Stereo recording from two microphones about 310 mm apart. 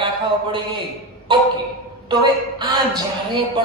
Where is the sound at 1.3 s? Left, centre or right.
Centre.